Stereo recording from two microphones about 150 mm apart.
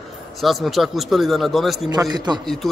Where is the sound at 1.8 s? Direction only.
25° right (ahead or behind).